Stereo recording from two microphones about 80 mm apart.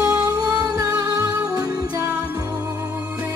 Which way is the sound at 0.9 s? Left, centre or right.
Centre.